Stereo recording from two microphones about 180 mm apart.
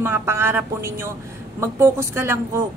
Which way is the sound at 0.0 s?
10° right (ahead or behind).